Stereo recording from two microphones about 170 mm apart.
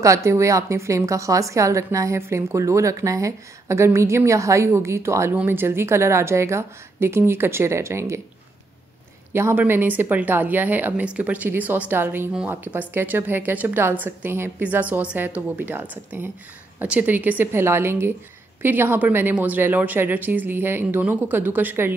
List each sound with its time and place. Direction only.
0.0 s a woman's voice: 15° right (ahead or behind)
9.3 s a woman's voice: 15° right (ahead or behind)